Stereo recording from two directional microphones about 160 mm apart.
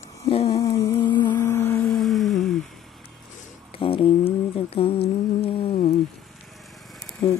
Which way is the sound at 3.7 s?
35° left (ahead or behind).